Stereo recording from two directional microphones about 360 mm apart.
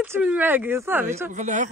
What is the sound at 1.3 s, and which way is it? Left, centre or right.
Speech, right.